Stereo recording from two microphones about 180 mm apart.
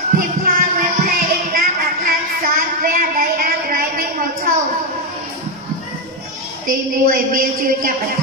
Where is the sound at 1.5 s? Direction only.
55° right (ahead or behind).